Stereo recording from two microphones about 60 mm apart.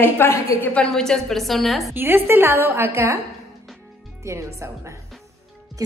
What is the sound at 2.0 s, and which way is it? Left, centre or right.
A woman's voice, right.